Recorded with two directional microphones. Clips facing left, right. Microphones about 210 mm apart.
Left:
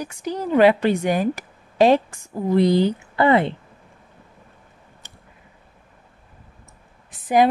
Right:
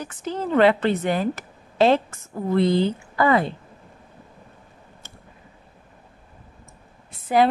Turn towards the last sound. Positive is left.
turn(degrees=15)  # may be behind; listen again after turning